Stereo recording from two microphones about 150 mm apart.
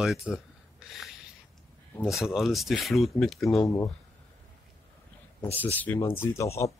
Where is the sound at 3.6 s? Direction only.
20° left (ahead or behind).